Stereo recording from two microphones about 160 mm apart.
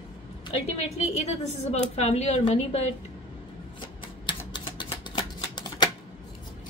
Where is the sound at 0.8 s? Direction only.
45° left (ahead or behind).